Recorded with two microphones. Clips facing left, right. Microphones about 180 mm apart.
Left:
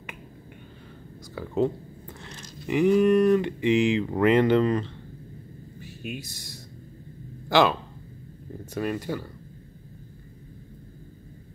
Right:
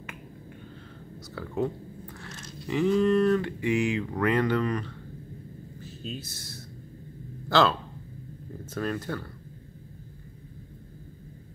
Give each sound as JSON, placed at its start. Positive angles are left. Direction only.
{"t": 1.3, "sound": "speech", "side_deg": 20}
{"t": 6.0, "sound": "speech", "side_deg": 15}
{"t": 8.7, "sound": "speech", "side_deg": 15}